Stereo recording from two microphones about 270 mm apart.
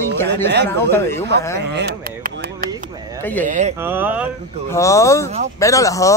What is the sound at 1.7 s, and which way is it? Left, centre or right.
Speech, right.